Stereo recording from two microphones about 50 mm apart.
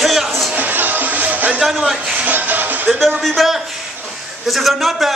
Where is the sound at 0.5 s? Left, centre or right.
Right.